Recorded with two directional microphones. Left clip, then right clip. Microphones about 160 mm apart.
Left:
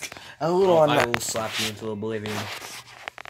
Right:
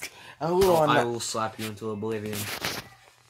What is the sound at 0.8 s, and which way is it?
Speech, 60° right (ahead or behind).